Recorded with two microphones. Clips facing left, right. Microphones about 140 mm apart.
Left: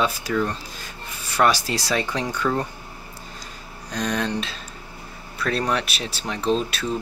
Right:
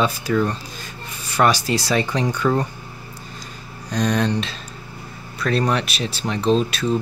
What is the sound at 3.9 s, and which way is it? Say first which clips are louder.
Speech: right 5 dB; centre (ahead or behind).